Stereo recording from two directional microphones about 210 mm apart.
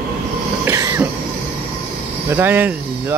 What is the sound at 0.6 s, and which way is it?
Cough, 15° right (ahead or behind).